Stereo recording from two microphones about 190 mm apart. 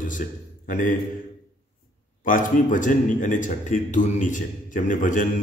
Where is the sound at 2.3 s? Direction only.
45° left (ahead or behind).